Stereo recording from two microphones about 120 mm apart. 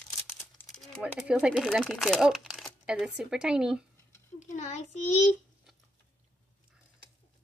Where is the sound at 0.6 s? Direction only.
15° left (ahead or behind).